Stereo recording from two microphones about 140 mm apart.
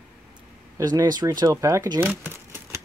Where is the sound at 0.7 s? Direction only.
25° right (ahead or behind).